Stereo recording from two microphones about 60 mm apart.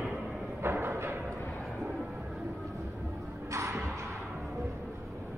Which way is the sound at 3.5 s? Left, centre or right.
Right.